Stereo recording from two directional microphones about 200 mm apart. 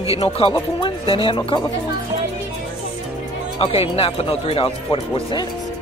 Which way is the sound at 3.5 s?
30° left (ahead or behind).